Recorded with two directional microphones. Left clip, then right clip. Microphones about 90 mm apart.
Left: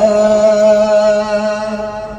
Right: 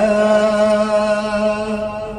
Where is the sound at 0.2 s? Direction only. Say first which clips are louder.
Left 4 dB; 5° right (ahead or behind).